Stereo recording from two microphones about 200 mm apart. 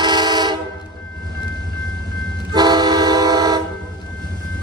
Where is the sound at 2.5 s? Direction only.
20° right (ahead or behind).